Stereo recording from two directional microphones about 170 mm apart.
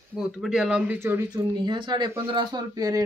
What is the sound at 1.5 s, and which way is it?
Speech, 25° right (ahead or behind).